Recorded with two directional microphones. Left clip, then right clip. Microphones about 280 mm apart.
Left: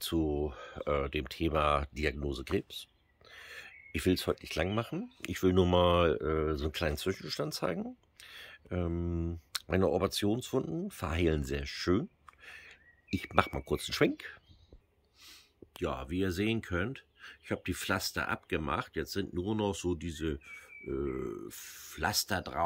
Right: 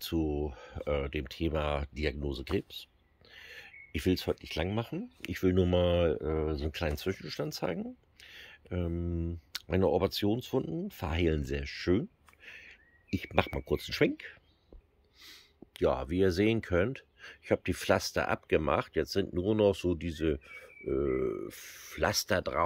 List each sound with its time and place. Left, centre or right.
0.0 s speech: centre
15.2 s speech: centre